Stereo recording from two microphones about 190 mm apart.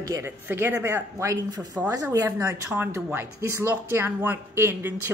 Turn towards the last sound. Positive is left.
turn(degrees=-10)  # may be behind; listen again after turning